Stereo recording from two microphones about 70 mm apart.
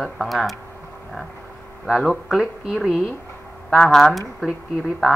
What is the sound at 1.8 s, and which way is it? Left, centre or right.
Speech, centre.